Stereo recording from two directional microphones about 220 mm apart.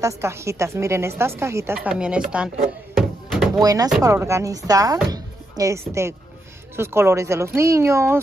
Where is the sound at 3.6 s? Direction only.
15° right (ahead or behind).